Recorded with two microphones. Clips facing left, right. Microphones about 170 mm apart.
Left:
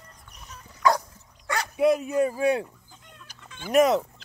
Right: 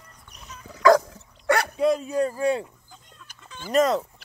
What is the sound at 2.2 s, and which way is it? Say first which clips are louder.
Speech: even; 15° left (ahead or behind).